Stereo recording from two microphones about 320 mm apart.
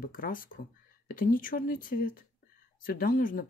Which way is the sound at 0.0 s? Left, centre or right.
Left.